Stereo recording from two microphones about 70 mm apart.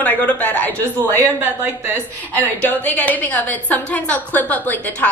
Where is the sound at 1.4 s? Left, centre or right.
Right.